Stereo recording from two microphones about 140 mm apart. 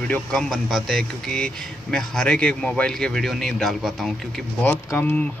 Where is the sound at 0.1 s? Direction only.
5° left (ahead or behind).